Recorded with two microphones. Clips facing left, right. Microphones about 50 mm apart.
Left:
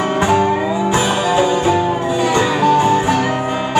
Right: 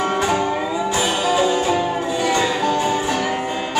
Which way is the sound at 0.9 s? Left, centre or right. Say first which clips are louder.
Left 3 dB; left.